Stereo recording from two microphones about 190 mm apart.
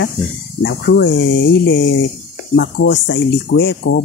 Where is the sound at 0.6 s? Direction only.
65° left (ahead or behind).